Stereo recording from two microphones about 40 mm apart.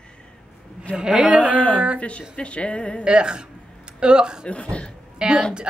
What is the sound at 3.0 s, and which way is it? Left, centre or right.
A woman's voice, right.